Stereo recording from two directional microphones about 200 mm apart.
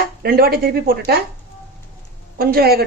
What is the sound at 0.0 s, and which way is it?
Speech, 50° right (ahead or behind).